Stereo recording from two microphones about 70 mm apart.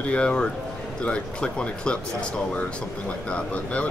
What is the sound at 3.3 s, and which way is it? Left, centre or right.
Speech, centre.